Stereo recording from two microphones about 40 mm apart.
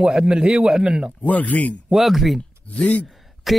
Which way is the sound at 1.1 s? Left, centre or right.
Left.